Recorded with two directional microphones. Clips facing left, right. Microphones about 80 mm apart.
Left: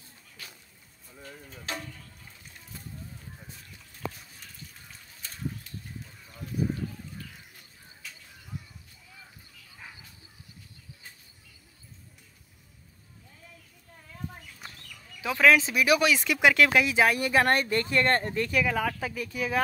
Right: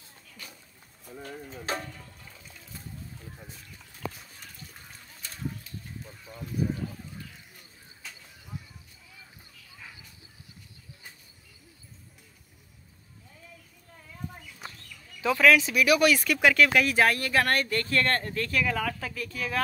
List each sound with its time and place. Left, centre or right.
9.8 s a sound: left
15.2 s speech: centre
16.8 s speech: centre